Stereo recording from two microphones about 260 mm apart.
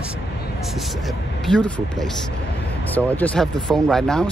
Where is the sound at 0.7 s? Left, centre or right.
Centre.